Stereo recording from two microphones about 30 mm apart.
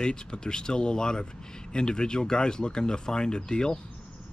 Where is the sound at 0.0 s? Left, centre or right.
Left.